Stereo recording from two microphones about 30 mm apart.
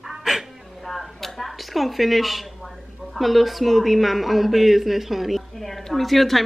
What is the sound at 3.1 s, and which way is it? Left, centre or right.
A woman's voice, centre.